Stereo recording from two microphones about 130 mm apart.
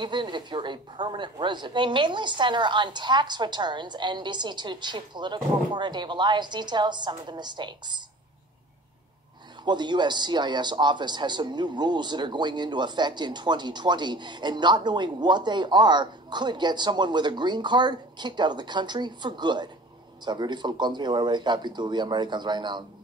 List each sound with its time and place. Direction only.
0.0 s a man's voice: 35° right (ahead or behind)
9.7 s a man's voice: 35° right (ahead or behind)